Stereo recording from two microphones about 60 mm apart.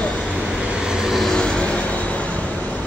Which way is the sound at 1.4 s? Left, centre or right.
Centre.